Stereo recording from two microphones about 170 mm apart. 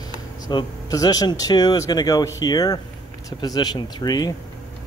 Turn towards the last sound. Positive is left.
turn(degrees=25)  # may be behind; listen again after turning